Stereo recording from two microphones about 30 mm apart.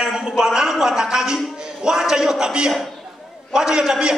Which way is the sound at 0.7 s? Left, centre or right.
Centre.